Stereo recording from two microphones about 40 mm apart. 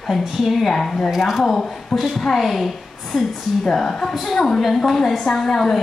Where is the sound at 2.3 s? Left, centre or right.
Centre.